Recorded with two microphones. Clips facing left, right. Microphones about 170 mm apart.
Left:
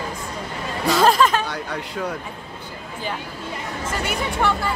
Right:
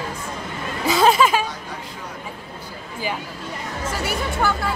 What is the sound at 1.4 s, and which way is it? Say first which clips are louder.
Speech: left 4 dB; 70° left (ahead or behind).